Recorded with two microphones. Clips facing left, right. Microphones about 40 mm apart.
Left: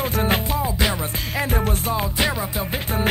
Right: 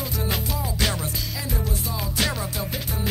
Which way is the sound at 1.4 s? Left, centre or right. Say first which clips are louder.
Left 10 dB; left.